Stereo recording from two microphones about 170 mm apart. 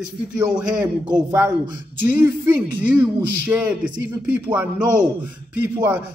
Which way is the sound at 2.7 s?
10° right (ahead or behind).